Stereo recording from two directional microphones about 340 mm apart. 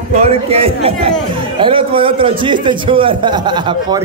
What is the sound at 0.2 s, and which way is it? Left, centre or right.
A man's voice, centre.